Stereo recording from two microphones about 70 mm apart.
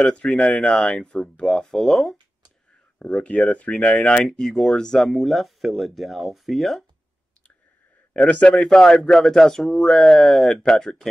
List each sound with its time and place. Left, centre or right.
0.0 s speech: centre
3.0 s speech: centre
8.2 s speech: left